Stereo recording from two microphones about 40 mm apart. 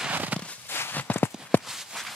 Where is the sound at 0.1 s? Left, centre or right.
Right.